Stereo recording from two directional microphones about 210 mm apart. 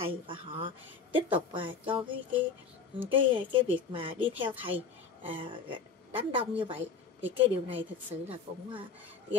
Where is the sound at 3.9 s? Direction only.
25° right (ahead or behind).